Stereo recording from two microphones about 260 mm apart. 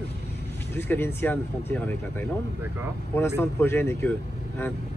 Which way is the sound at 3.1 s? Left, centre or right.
Centre.